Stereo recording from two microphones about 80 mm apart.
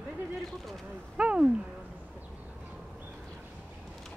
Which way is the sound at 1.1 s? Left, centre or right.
Centre.